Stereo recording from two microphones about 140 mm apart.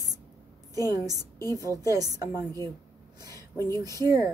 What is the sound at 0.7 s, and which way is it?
A woman's voice, 25° right (ahead or behind).